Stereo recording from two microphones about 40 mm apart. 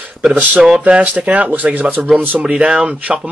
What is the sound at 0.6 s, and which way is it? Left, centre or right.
Speech, right.